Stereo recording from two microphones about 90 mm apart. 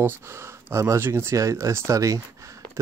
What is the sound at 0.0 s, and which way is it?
Speech, 30° right (ahead or behind).